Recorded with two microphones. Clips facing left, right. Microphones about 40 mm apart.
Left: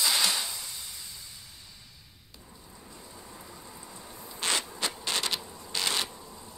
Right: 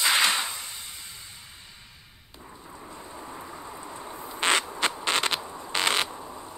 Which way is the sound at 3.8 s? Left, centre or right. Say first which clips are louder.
Right 7 dB; right.